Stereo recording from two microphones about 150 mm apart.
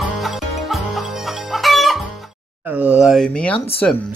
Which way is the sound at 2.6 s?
10° right (ahead or behind).